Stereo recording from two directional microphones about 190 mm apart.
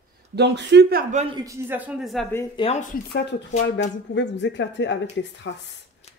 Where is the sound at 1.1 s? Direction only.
30° right (ahead or behind).